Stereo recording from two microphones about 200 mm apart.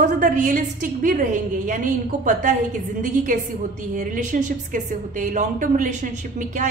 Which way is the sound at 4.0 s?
40° right (ahead or behind).